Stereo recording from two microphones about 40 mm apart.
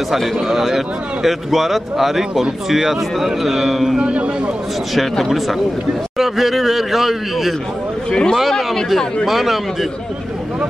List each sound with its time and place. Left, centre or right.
0.5 s a man's voice: centre
4.0 s speech: right
5.2 s a man's voice: centre
6.1 s a sound: centre
8.1 s speech: centre
8.4 s a man's voice: centre